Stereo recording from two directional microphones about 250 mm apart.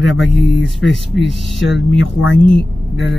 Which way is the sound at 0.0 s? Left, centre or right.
Centre.